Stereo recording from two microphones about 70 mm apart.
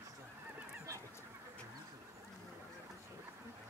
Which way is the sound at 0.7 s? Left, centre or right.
Right.